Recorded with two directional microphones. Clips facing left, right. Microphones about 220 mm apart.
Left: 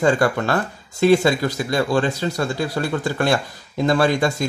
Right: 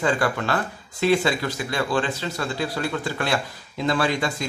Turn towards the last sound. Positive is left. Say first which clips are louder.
# left 5 dB
turn(degrees=45)  # may be behind; listen again after turning